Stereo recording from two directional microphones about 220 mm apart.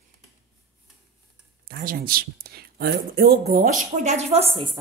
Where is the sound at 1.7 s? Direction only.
40° right (ahead or behind).